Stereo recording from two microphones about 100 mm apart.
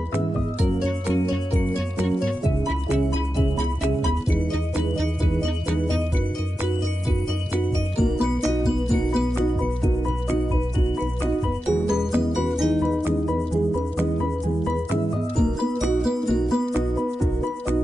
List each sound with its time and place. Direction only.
2.0 s music: centre (ahead or behind)
8.4 s music: 5° right (ahead or behind)
12.4 s music: centre (ahead or behind)
15.8 s music: 5° right (ahead or behind)